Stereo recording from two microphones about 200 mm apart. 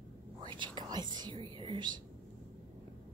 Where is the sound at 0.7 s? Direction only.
20° right (ahead or behind).